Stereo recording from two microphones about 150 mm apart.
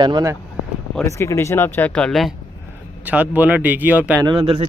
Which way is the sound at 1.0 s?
20° left (ahead or behind).